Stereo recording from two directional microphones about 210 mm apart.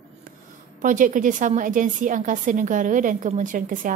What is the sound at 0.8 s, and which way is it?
Speech, 40° right (ahead or behind).